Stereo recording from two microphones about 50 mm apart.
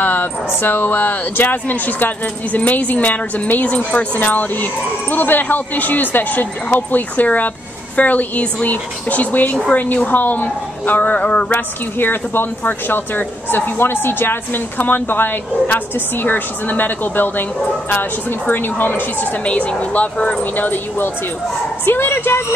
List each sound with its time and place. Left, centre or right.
0.0 s a sound: left
0.5 s speech: left
11.5 s speech: left
18.5 s speech: left
19.4 s speech: left
20.5 s speech: left